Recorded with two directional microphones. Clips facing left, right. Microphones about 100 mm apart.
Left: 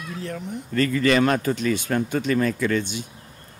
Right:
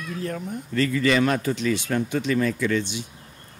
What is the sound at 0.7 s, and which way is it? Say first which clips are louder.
Speech: left 2 dB; 45° left (ahead or behind).